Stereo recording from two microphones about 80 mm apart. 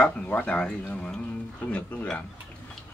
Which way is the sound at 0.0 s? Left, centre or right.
Centre.